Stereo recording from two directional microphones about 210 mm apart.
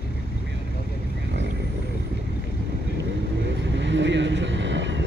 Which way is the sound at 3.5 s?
60° right (ahead or behind).